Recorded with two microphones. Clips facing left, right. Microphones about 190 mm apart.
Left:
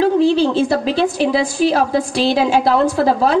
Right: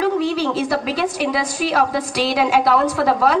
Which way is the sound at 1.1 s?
30° left (ahead or behind).